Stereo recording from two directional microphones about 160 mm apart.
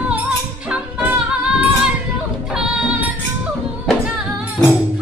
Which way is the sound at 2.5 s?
5° right (ahead or behind).